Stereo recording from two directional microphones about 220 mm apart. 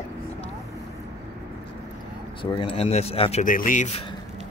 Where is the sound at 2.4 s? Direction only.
25° left (ahead or behind).